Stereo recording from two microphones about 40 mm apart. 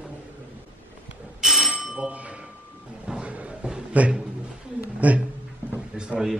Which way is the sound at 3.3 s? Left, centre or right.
Right.